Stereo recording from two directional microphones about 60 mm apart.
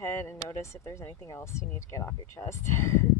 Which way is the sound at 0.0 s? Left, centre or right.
Left.